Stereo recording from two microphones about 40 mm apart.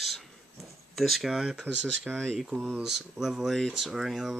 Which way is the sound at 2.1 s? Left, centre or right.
Right.